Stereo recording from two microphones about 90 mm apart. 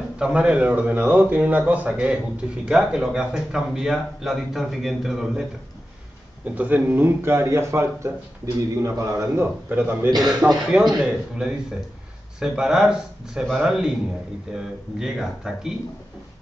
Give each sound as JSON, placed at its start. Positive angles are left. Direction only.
{"t": 0.2, "sound": "a man's voice", "side_deg": -10}
{"t": 6.4, "sound": "a man's voice", "side_deg": -15}
{"t": 9.7, "sound": "a man's voice", "side_deg": -20}